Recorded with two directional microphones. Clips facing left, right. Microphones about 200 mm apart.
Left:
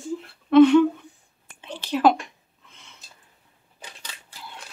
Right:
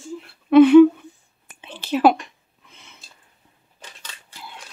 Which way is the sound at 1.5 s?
20° right (ahead or behind).